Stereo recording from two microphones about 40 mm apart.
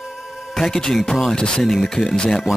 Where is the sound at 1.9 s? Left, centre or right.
Centre.